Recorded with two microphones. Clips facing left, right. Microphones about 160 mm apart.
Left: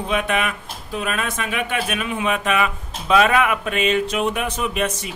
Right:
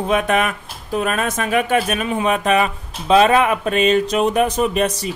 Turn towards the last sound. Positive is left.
turn(degrees=-35)  # may be behind; listen again after turning